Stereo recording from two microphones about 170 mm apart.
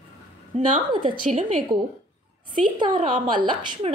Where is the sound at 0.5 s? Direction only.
30° right (ahead or behind).